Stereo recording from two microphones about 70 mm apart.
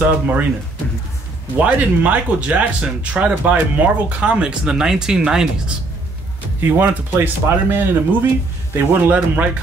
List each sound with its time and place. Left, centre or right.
0.0 s speech: right
1.6 s speech: centre
6.6 s a man's voice: right